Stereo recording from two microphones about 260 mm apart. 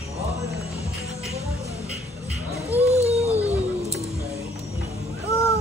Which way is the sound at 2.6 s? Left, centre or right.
Right.